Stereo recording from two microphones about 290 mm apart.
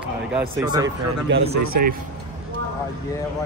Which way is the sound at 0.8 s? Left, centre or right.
Right.